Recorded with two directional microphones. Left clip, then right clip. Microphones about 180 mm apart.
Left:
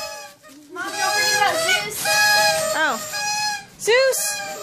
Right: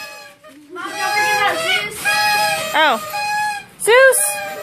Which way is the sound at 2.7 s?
10° right (ahead or behind).